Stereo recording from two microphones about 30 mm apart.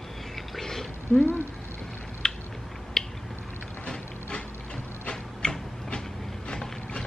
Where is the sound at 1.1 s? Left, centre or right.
Left.